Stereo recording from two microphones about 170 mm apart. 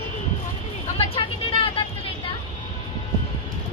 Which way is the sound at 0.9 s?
35° left (ahead or behind).